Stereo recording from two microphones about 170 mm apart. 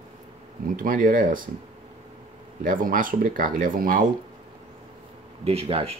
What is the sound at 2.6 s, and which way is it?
Speech, 55° right (ahead or behind).